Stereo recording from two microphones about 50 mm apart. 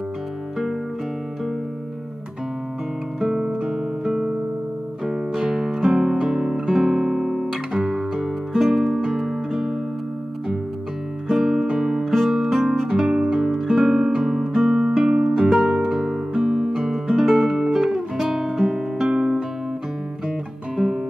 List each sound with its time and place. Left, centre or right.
3.2 s guitar: centre
5.0 s music: centre
6.6 s guitar: centre
11.2 s music: centre
12.0 s music: centre
17.4 s guitar: centre
20.7 s guitar: centre